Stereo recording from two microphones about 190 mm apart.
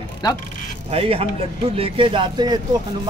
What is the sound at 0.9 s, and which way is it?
Speech, 30° right (ahead or behind).